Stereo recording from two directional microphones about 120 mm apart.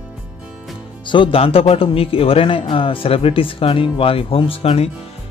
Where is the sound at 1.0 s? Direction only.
45° left (ahead or behind).